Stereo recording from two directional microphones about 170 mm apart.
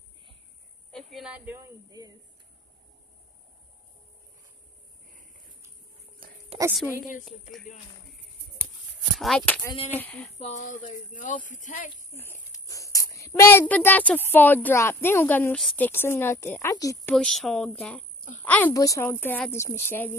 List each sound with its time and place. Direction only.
1.1 s speech: 5° right (ahead or behind)
1.9 s speech: 20° right (ahead or behind)
6.2 s a sound: 55° right (ahead or behind)
7.7 s speech: 50° left (ahead or behind)
9.2 s a woman's voice: 5° left (ahead or behind)
10.3 s speech: 40° left (ahead or behind)
12.1 s a child's voice: 15° left (ahead or behind)
17.1 s a woman's voice: 5° left (ahead or behind)